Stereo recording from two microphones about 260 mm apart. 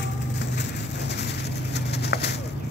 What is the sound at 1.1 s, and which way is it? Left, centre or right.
Pigeon, left.